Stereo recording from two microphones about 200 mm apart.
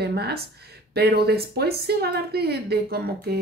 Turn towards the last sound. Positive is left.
turn(degrees=-55)  # may be behind; listen again after turning